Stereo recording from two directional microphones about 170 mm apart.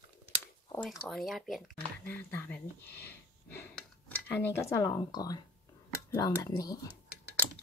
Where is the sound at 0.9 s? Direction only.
Centre (ahead or behind).